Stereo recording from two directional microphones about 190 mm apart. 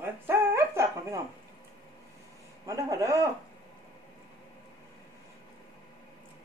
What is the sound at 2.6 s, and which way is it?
Speech, 20° right (ahead or behind).